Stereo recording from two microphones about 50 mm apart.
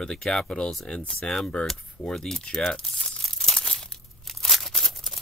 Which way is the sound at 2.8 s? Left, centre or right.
Centre.